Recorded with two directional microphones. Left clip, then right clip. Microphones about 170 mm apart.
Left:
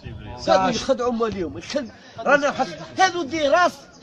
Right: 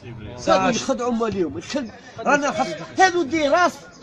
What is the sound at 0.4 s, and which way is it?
Speech, 35° left (ahead or behind).